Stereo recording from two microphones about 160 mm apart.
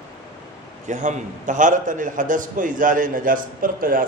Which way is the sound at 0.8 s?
50° right (ahead or behind).